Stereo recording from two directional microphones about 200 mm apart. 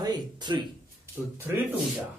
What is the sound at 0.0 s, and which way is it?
Speech, 20° right (ahead or behind).